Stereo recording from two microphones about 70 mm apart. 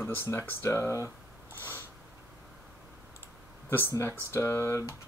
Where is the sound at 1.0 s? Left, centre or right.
Right.